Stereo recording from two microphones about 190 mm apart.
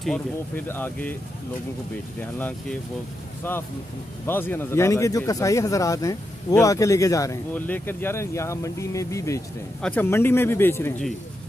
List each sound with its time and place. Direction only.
0.7 s speech: 10° left (ahead or behind)
2.3 s speech: 10° left (ahead or behind)
4.3 s speech: 10° left (ahead or behind)